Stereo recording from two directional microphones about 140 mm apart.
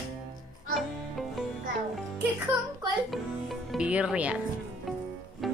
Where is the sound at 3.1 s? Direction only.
Centre (ahead or behind).